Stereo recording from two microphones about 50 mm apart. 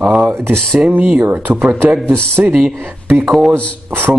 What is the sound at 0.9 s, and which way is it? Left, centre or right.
A man's voice, right.